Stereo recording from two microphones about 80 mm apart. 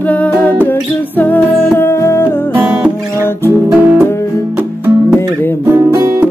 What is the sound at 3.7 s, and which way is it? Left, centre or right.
Music, centre.